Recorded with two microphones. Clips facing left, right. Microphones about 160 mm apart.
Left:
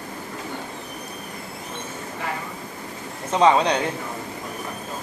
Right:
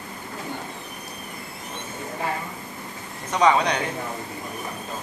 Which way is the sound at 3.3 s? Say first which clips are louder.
Left 2 dB; 30° left (ahead or behind).